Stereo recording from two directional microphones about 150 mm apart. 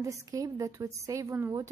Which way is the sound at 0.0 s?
20° right (ahead or behind).